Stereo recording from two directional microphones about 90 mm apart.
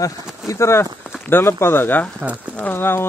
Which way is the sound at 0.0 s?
35° left (ahead or behind).